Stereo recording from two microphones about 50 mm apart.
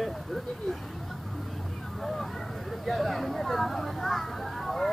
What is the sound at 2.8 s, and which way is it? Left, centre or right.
Speech, centre.